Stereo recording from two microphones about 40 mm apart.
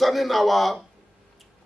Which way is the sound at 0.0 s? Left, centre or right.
Centre.